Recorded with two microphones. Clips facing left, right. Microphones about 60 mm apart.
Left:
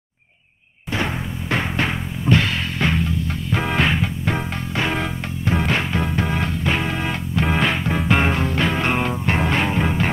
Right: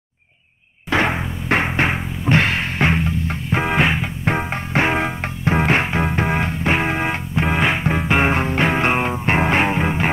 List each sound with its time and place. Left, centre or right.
0.8 s a sound: right
1.7 s music: right
3.6 s music: centre
4.2 s music: right
7.4 s music: centre
8.3 s music: right